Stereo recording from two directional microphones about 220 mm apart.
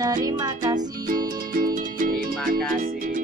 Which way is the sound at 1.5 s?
40° right (ahead or behind).